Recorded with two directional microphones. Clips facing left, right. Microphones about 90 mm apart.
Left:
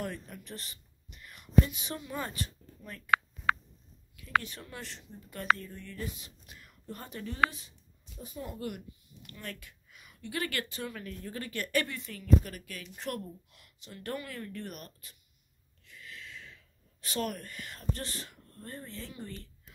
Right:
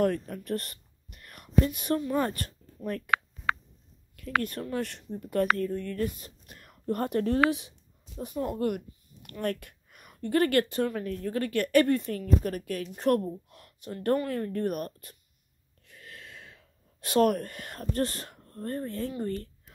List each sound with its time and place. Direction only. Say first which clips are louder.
0.0 s speech: right 12 dB; 50° right (ahead or behind)
4.2 s speech: right 2 dB; 50° right (ahead or behind)
8.2 s a woman's voice: right 10 dB; 55° right (ahead or behind)
15.8 s a sound: even; 50° right (ahead or behind)